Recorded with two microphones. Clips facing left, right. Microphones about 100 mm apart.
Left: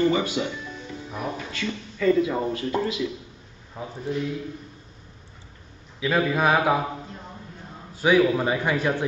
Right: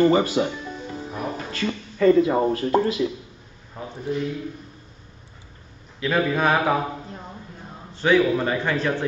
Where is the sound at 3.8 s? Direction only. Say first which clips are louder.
Even; 5° left (ahead or behind).